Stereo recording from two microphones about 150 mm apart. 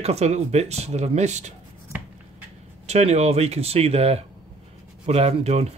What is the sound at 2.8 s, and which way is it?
Speech, 45° right (ahead or behind).